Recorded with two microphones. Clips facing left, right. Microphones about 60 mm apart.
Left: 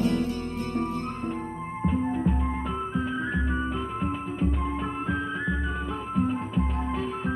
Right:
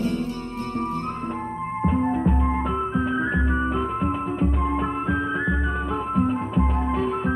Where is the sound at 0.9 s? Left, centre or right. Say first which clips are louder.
Right 3 dB; right.